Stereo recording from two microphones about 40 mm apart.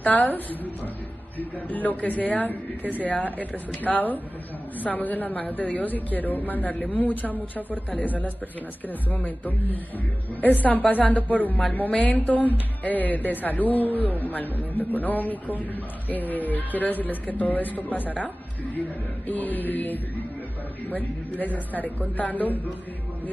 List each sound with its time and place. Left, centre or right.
0.0 s speech: left
19.2 s speech: left